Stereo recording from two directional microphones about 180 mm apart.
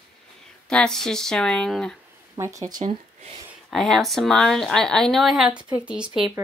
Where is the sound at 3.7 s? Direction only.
Centre (ahead or behind).